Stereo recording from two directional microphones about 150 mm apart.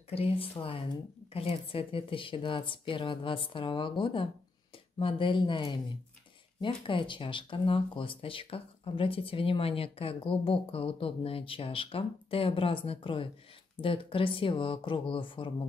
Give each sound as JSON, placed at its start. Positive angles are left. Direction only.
{"t": 0.1, "sound": "speech", "side_deg": 40}